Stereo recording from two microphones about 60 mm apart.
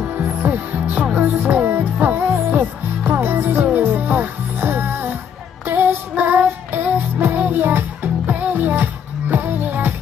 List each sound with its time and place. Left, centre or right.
0.3 s music: right